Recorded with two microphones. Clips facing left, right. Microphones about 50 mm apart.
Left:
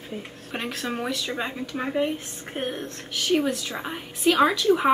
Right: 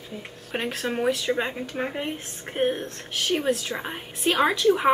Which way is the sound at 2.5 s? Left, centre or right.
Right.